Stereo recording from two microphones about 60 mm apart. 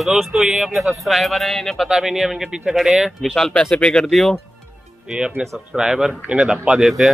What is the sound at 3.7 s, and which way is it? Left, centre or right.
Speech, centre.